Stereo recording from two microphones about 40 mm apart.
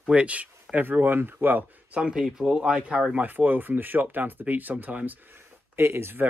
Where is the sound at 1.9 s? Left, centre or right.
Right.